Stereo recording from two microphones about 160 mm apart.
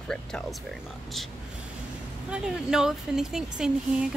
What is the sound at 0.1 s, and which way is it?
Speech, 5° left (ahead or behind).